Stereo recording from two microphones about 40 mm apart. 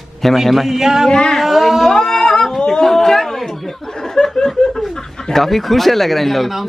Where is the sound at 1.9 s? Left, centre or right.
Centre.